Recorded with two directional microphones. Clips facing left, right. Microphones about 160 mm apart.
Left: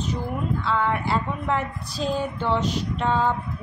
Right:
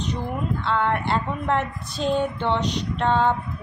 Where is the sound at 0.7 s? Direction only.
Centre (ahead or behind).